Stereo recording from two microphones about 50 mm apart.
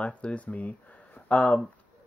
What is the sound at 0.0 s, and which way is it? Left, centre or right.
Speech, left.